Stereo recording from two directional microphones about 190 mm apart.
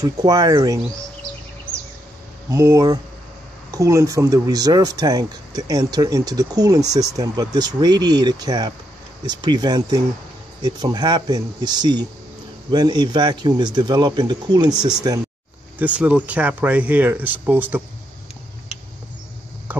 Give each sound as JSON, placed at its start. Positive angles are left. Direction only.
{"t": 0.0, "sound": "speech", "side_deg": -20}
{"t": 2.5, "sound": "speech", "side_deg": -15}
{"t": 15.8, "sound": "speech", "side_deg": -5}
{"t": 19.7, "sound": "a sound", "side_deg": -10}